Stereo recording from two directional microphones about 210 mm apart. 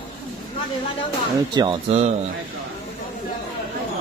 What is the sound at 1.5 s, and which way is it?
Speech, 20° right (ahead or behind).